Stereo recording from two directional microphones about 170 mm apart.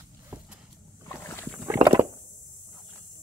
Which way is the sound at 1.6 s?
15° right (ahead or behind).